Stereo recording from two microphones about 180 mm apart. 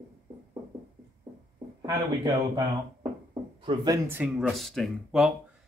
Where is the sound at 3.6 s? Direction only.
30° right (ahead or behind).